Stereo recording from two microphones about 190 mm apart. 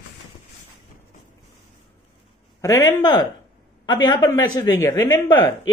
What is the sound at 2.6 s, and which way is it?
A man's voice, 20° left (ahead or behind).